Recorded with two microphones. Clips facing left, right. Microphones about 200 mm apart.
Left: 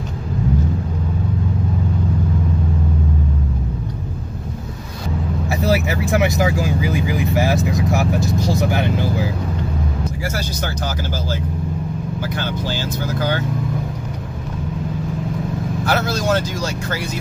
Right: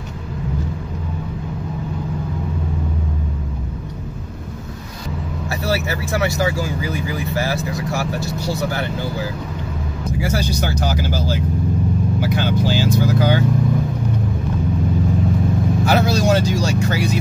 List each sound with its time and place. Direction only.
5.5 s speech: 15° left (ahead or behind)
10.2 s speech: 15° right (ahead or behind)
12.2 s speech: 15° right (ahead or behind)
15.8 s speech: 15° right (ahead or behind)